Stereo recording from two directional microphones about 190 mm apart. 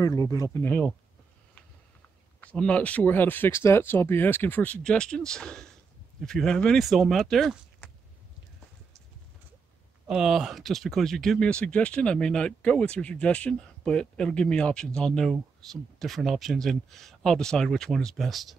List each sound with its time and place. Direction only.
0.0 s speech: 15° left (ahead or behind)
2.4 s speech: 5° left (ahead or behind)
10.0 s speech: 5° right (ahead or behind)